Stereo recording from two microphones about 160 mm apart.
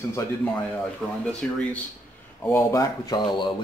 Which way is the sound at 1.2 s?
10° left (ahead or behind).